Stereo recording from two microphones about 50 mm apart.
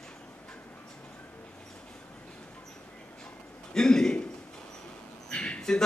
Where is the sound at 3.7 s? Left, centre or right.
Centre.